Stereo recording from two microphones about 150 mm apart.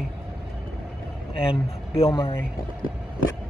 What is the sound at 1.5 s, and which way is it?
Speech, 40° left (ahead or behind).